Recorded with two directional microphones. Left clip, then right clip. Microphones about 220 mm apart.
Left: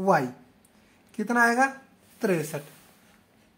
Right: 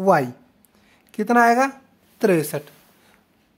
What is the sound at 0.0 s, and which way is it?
A woman's voice, 45° right (ahead or behind).